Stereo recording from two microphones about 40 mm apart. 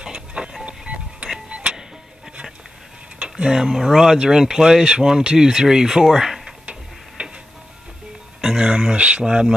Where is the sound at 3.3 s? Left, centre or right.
Centre.